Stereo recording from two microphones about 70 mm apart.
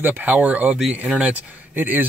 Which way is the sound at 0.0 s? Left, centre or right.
Right.